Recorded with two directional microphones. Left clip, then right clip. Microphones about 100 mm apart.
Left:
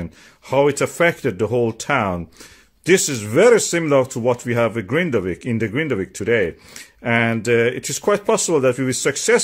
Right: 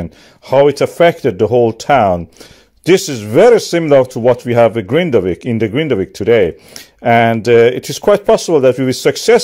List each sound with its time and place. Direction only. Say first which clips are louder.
0.5 s speech: right 7 dB; 35° right (ahead or behind)